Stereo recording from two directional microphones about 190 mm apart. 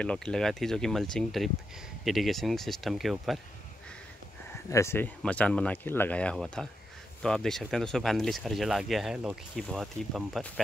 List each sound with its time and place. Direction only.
0.0 s speech: 5° left (ahead or behind)
4.5 s speech: 15° left (ahead or behind)